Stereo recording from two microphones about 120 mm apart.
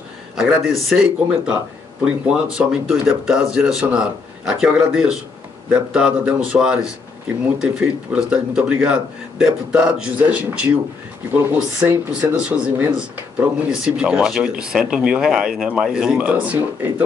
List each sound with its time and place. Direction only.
0.4 s a man's voice: 5° right (ahead or behind); by 12.1 s 20° right (ahead or behind)
12.2 s speech: 10° right (ahead or behind)